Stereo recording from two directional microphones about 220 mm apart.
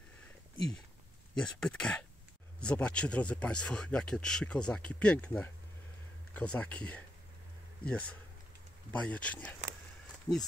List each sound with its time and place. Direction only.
1.3 s speech: 5° left (ahead or behind)